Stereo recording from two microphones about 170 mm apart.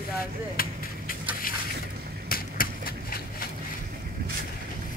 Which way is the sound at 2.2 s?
60° left (ahead or behind).